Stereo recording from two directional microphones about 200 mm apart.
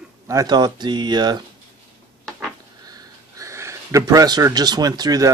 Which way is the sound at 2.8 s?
20° right (ahead or behind).